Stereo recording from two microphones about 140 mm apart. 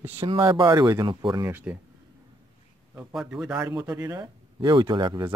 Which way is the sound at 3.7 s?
30° right (ahead or behind).